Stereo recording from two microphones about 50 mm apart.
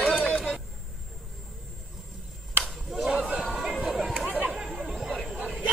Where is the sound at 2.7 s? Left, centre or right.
Centre.